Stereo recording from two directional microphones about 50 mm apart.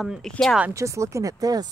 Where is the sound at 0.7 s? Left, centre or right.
Right.